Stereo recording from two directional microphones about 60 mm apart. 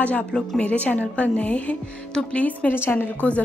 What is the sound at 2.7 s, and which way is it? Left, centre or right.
Speech, left.